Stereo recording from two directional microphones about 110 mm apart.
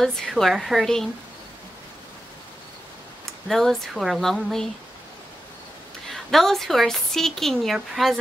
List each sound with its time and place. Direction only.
0.0 s a woman's voice: centre (ahead or behind)
3.4 s a woman's voice: 5° left (ahead or behind)
6.1 s a woman's voice: centre (ahead or behind)